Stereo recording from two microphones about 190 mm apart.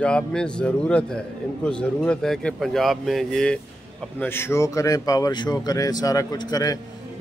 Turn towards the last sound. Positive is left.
turn(degrees=20)  # may be behind; listen again after turning